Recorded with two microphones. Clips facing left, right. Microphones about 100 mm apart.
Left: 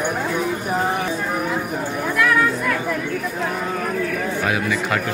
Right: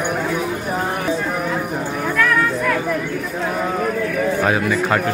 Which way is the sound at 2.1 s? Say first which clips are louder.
Even; 5° left (ahead or behind).